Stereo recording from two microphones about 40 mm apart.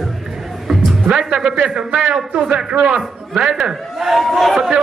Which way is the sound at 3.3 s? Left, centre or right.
Centre.